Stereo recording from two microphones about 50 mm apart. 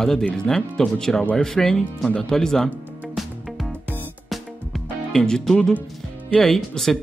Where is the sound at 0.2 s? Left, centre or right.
Centre.